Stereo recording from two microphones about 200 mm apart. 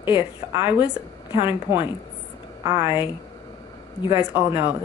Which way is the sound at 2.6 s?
15° right (ahead or behind).